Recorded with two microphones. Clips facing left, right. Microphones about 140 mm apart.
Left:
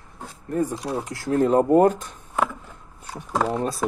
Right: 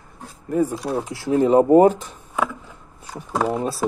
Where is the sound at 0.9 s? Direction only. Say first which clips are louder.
Right 3 dB; 5° right (ahead or behind).